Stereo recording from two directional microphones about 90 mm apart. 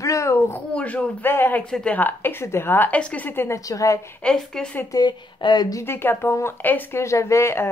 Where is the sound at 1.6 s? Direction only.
10° left (ahead or behind).